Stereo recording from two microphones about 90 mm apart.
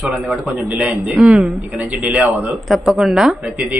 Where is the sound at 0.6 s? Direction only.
15° right (ahead or behind).